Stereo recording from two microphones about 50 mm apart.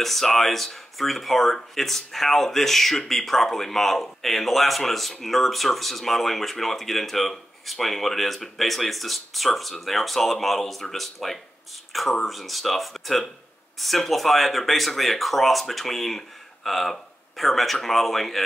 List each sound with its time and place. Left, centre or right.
0.0 s speech: centre